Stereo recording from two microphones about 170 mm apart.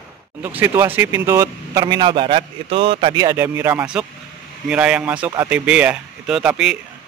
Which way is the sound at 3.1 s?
15° right (ahead or behind).